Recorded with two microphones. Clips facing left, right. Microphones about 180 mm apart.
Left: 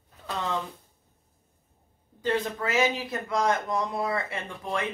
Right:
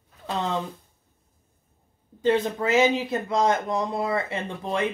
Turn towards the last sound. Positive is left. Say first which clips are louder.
# right 4 dB
turn(degrees=-25)  # may be behind; listen again after turning